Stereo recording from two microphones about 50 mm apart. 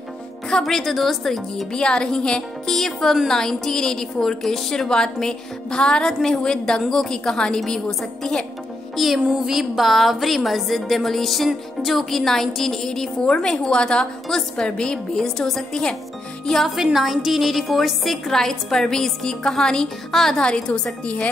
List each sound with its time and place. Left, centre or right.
0.5 s a woman's voice: centre
1.7 s a woman's voice: centre
8.9 s music: centre
9.3 s a woman's voice: centre
16.6 s a woman's voice: centre
20.4 s a woman's voice: centre